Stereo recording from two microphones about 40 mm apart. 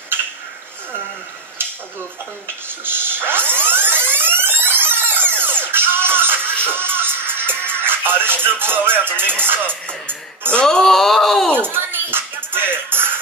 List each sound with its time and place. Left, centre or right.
2.8 s music: right
9.7 s music: left
10.5 s speech: centre
11.5 s music: right